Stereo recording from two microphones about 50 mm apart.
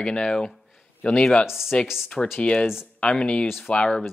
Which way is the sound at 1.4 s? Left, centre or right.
Centre.